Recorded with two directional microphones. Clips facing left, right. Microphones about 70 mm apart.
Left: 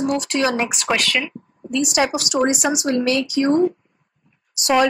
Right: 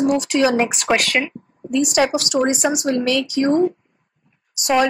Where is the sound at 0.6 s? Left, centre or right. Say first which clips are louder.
Right 3 dB; right.